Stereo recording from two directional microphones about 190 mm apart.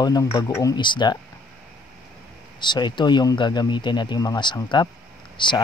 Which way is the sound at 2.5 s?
25° left (ahead or behind).